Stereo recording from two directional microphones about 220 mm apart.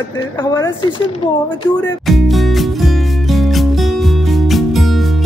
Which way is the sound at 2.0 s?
Centre (ahead or behind).